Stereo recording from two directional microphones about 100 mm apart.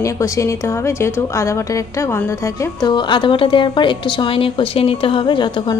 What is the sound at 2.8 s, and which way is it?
A woman's voice, 50° left (ahead or behind).